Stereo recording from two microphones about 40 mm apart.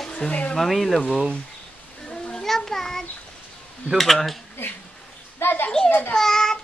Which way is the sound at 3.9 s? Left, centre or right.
Centre.